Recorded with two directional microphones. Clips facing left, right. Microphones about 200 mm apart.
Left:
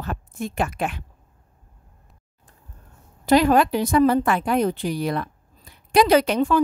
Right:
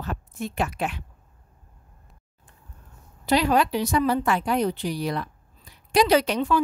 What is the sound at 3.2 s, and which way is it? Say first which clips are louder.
A woman's voice: left 5 dB; 50° left (ahead or behind).